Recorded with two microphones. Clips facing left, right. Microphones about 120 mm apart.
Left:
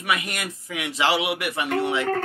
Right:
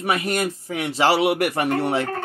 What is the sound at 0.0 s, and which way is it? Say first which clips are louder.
Speech: right 5 dB; 35° right (ahead or behind).